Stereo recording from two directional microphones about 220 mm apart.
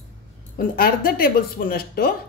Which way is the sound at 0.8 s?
40° left (ahead or behind).